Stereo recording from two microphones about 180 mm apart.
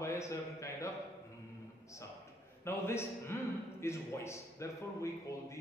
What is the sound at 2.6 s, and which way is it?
A man's voice, 15° left (ahead or behind).